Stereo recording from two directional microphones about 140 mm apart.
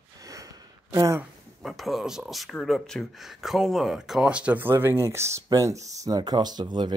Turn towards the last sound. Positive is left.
turn(degrees=-30)  # may be behind; listen again after turning